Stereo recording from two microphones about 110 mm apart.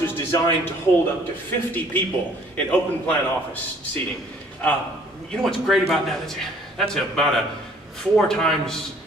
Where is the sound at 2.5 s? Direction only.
15° left (ahead or behind).